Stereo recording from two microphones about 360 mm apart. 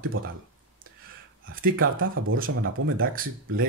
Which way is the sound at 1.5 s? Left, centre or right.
Right.